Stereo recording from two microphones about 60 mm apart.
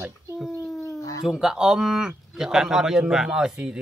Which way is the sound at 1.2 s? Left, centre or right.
Centre.